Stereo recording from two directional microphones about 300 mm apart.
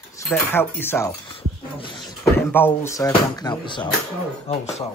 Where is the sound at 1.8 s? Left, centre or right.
Centre.